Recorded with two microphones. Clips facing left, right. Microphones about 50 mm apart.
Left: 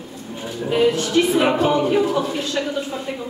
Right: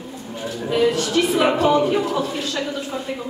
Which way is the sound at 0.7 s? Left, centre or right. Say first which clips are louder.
Left 1 dB; centre.